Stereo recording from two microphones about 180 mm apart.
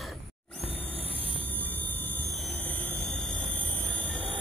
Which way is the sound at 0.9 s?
30° left (ahead or behind).